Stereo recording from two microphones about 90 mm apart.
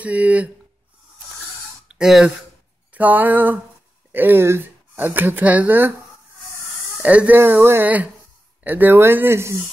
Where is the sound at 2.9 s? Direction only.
20° right (ahead or behind).